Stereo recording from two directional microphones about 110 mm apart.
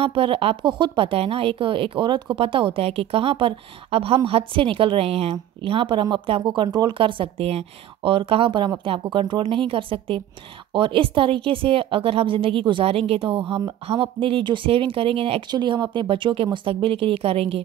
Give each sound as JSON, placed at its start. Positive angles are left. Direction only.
{"t": 0.0, "sound": "a woman's voice", "side_deg": -55}
{"t": 15.5, "sound": "a woman's voice", "side_deg": -45}